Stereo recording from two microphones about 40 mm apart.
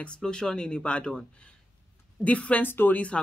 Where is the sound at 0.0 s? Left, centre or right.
Centre.